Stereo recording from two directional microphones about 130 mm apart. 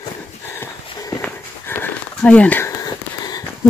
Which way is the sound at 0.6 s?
25° left (ahead or behind).